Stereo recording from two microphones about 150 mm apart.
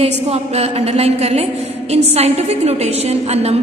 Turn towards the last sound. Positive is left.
turn(degrees=-45)  # may be behind; listen again after turning